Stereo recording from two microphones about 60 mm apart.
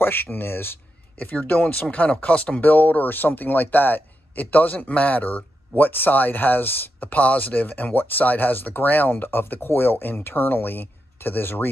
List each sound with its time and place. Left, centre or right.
0.0 s speech: left
1.1 s speech: left